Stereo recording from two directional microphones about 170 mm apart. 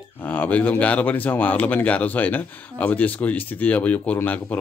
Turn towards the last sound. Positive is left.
turn(degrees=10)  # may be behind; listen again after turning